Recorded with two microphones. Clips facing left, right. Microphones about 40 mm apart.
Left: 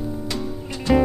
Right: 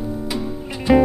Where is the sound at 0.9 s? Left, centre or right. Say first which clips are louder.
Right 4 dB; centre.